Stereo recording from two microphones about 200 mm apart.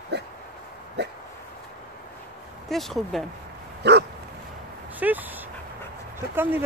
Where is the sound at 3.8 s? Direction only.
60° right (ahead or behind).